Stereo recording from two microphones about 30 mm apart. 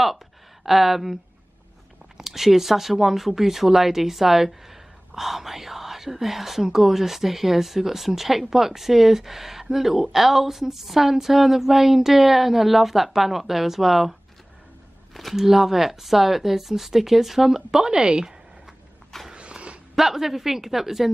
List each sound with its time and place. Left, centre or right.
0.7 s speech: centre
2.1 s speech: centre
15.3 s speech: centre; by 18.3 s right
19.3 s dog: right
20.0 s speech: centre